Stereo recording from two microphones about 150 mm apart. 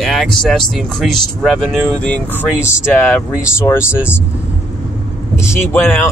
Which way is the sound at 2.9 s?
15° left (ahead or behind).